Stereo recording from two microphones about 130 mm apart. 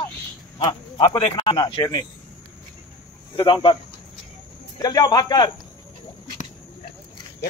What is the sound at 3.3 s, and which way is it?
Speech, 40° left (ahead or behind).